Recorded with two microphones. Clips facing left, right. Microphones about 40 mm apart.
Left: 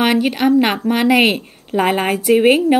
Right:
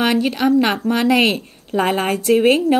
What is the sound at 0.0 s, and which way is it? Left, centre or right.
A woman's voice, centre.